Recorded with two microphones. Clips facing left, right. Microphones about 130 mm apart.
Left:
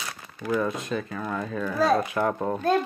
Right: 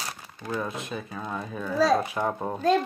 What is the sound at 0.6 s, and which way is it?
Speech, 5° right (ahead or behind).